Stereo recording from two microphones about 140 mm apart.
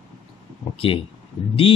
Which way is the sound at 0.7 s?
40° left (ahead or behind).